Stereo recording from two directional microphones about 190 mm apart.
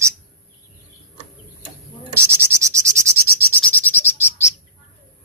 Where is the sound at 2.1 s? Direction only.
15° right (ahead or behind).